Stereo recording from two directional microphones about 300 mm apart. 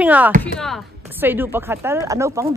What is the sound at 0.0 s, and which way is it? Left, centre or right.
Speech, centre.